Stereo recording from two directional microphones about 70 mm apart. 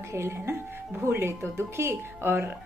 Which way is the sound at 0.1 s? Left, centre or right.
Right.